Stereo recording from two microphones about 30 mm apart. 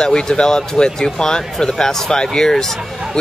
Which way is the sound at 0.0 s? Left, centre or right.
Left.